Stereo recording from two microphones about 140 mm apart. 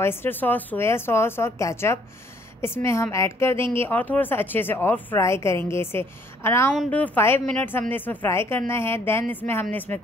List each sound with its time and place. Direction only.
0.0 s a woman's voice: 15° left (ahead or behind)